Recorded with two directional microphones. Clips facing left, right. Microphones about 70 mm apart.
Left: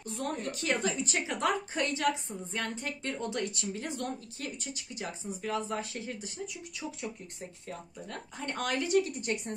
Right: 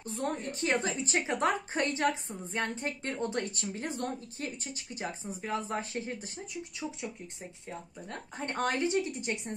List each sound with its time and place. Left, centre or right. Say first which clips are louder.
0.0 s a woman's voice: right 1 dB; right
7.6 s a woman's voice: right 1 dB; right